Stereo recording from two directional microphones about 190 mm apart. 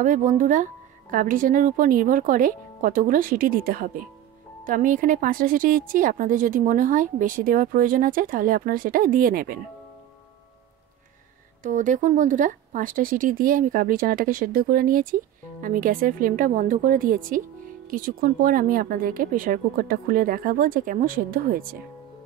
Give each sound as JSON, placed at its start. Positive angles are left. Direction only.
{"t": 0.0, "sound": "speech", "side_deg": -40}
{"t": 11.6, "sound": "speech", "side_deg": -45}